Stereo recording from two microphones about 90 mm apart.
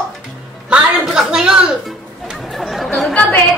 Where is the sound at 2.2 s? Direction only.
Centre (ahead or behind).